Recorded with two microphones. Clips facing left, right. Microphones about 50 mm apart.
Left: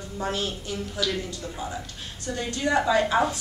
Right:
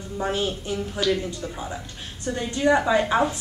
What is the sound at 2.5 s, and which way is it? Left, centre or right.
Speech, right.